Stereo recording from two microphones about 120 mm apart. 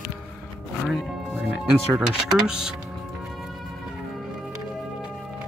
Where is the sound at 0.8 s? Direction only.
5° right (ahead or behind).